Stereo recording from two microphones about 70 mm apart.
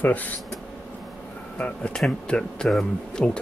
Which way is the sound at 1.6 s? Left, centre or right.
Centre.